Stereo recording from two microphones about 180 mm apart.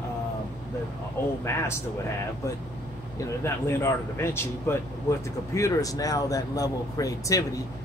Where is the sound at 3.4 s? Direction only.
15° left (ahead or behind).